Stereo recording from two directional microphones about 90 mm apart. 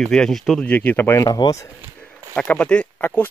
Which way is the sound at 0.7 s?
20° left (ahead or behind).